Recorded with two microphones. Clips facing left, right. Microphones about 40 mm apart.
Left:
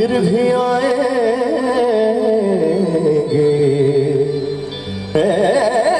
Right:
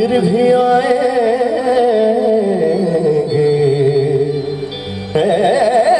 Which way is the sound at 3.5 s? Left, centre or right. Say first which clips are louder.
Right 1 dB; centre.